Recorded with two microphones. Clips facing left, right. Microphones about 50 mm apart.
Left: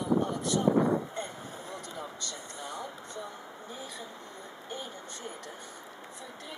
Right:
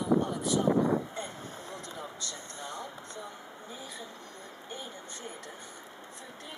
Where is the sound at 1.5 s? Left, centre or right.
Centre.